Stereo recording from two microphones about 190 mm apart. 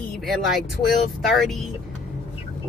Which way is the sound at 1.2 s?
Centre (ahead or behind).